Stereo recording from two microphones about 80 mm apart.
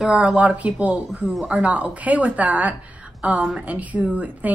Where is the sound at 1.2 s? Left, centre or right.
Centre.